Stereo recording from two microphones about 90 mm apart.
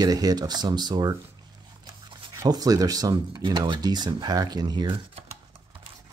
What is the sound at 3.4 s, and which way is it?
Speech, 55° right (ahead or behind).